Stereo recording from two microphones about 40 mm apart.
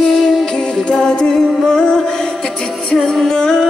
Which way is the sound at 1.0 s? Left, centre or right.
Centre.